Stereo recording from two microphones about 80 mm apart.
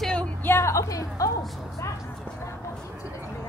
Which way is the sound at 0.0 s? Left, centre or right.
Centre.